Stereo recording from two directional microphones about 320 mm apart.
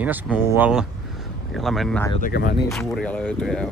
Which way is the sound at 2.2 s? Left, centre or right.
Left.